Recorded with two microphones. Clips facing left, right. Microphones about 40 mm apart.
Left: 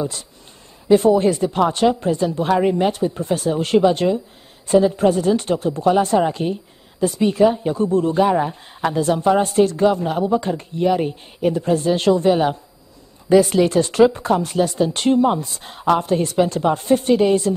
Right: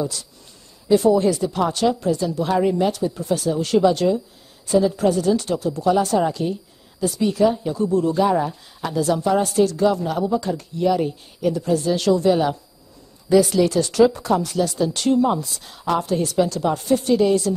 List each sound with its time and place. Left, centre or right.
0.0 s speech: left